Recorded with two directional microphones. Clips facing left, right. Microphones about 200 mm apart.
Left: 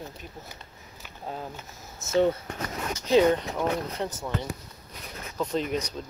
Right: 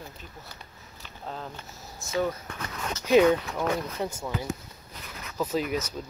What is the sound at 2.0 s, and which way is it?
Speech, 25° left (ahead or behind).